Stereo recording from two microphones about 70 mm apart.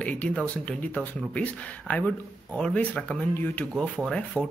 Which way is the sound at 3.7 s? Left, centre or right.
Centre.